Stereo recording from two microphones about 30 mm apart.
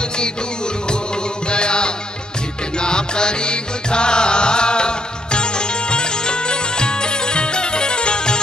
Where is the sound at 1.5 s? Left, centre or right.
Left.